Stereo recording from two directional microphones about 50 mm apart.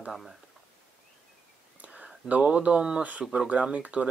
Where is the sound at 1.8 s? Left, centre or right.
Right.